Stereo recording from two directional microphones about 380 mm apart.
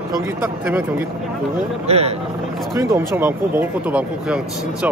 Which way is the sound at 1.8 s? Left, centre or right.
Centre.